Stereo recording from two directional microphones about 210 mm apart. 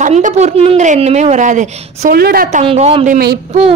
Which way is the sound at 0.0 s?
35° right (ahead or behind).